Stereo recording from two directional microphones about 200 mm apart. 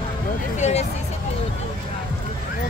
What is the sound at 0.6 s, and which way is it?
Hubbub, 35° left (ahead or behind).